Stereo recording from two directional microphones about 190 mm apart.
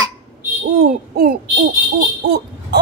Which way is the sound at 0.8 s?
55° right (ahead or behind).